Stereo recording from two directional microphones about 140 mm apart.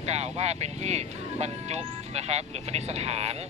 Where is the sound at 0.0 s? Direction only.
50° right (ahead or behind).